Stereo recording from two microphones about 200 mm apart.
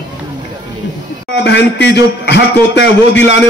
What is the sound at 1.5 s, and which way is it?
A man's voice, 60° left (ahead or behind).